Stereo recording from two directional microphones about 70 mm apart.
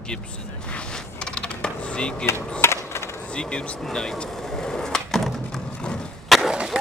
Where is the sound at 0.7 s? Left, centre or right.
Centre.